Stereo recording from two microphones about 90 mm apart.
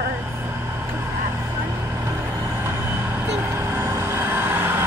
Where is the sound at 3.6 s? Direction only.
30° right (ahead or behind).